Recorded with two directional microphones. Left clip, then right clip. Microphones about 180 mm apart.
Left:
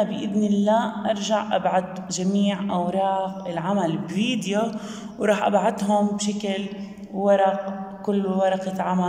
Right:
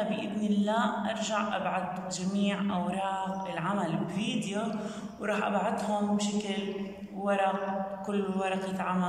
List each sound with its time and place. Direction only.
0.1 s a man's voice: 35° left (ahead or behind)